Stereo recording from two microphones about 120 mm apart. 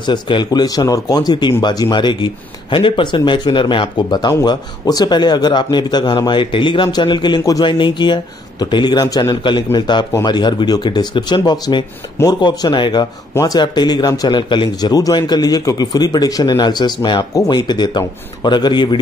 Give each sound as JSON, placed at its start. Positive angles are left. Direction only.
{"t": 0.0, "sound": "speech", "side_deg": 40}